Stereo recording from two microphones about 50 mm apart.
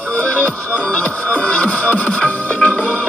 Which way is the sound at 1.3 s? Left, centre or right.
Left.